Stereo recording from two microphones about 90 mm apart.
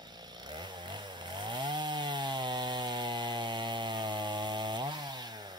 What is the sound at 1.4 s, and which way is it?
Chainsaw, 55° right (ahead or behind).